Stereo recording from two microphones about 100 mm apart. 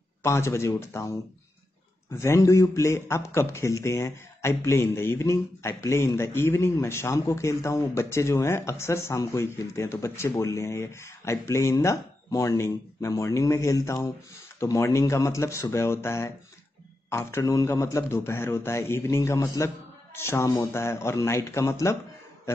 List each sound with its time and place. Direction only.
0.2 s a man's voice: 25° left (ahead or behind)
2.1 s a man's voice: 30° left (ahead or behind)